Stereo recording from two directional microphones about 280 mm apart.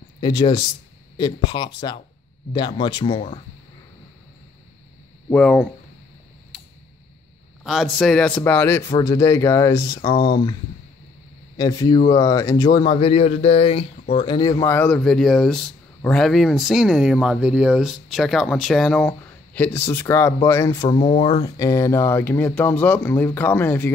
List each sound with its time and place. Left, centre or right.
0.2 s speech: centre
5.3 s speech: centre
6.5 s a sound: centre
7.6 s speech: centre
11.5 s speech: centre